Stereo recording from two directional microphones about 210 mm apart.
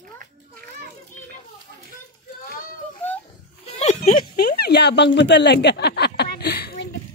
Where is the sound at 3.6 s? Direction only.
30° left (ahead or behind).